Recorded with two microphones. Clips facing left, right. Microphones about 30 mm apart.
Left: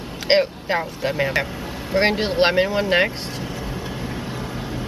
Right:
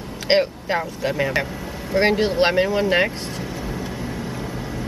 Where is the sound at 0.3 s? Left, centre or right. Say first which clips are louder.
Left 1 dB; centre.